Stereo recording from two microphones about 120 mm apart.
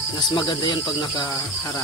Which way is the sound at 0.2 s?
40° left (ahead or behind).